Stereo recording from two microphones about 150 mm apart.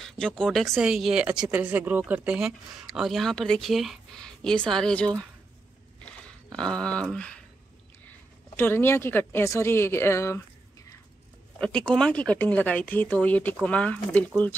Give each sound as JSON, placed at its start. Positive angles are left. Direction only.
{"t": 0.0, "sound": "speech", "side_deg": 5}
{"t": 6.5, "sound": "speech", "side_deg": 5}
{"t": 8.5, "sound": "speech", "side_deg": 15}
{"t": 11.6, "sound": "speech", "side_deg": 5}